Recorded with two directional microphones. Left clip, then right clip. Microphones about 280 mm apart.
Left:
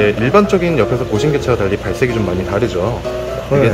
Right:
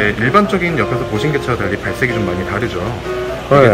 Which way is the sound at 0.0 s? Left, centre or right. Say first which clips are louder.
Left 1 dB; left.